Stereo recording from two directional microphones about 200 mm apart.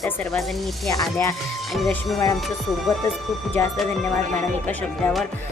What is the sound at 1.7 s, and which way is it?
A woman's voice, centre (ahead or behind).